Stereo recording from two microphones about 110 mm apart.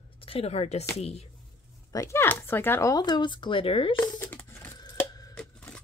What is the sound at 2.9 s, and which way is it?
Speech, 40° left (ahead or behind).